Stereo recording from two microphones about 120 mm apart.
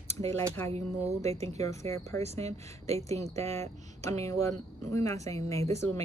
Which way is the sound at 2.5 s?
65° right (ahead or behind).